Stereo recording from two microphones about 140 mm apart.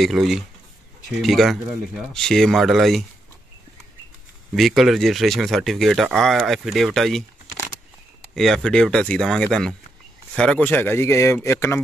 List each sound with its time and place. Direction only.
0.0 s speech: centre (ahead or behind)
4.6 s speech: centre (ahead or behind)
8.4 s speech: 5° left (ahead or behind); by 11.8 s 20° left (ahead or behind)